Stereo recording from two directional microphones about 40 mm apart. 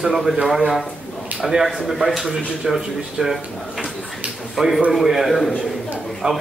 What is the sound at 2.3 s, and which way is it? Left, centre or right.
A man's voice, centre.